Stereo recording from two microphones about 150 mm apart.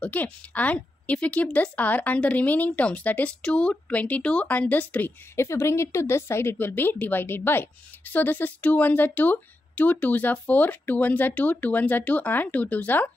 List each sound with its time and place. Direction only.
0.0 s a woman's voice: 10° left (ahead or behind)